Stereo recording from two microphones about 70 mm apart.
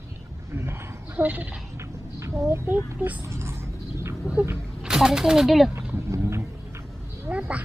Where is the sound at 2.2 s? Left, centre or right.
Right.